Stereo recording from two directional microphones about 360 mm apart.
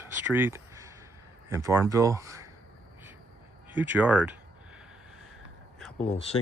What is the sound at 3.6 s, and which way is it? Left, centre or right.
Speech, centre.